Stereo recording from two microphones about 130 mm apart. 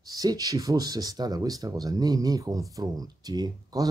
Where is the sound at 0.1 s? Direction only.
30° right (ahead or behind).